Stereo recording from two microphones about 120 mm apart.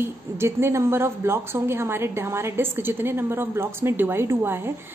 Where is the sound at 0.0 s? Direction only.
20° right (ahead or behind).